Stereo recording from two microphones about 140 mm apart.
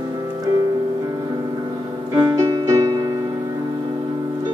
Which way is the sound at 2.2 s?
25° right (ahead or behind).